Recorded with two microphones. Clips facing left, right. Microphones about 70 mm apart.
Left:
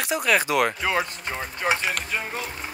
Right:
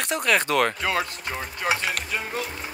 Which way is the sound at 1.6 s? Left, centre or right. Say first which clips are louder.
Left 1 dB; left.